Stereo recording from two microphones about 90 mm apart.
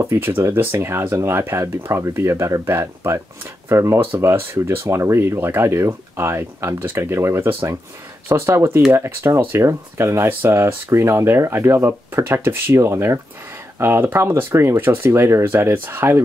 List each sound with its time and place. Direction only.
0.0 s speech: 25° right (ahead or behind)